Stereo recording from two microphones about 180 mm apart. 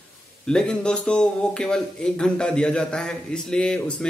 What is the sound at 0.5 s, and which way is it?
Speech, 5° left (ahead or behind).